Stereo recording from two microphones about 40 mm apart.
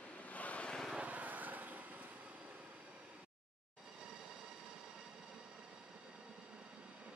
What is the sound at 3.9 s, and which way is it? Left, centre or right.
Train, centre.